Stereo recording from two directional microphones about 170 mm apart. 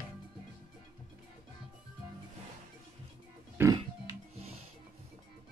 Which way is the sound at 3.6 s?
20° right (ahead or behind).